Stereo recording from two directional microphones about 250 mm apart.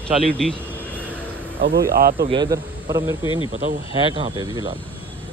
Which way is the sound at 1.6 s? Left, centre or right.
Right.